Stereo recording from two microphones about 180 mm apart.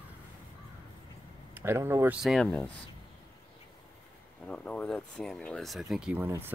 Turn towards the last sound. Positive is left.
turn(degrees=-10)  # may be behind; listen again after turning